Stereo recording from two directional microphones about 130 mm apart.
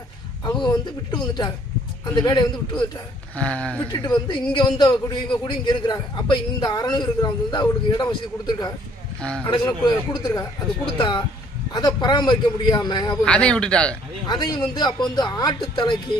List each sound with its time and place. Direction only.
0.5 s a man's voice: 35° left (ahead or behind)
3.3 s speech: 10° left (ahead or behind)
3.9 s a man's voice: 35° left (ahead or behind)
9.2 s speech: 10° left (ahead or behind)
9.5 s a man's voice: 35° left (ahead or behind)
11.0 s a man's voice: 35° left (ahead or behind)
13.2 s speech: 10° left (ahead or behind)
14.2 s a man's voice: 35° left (ahead or behind)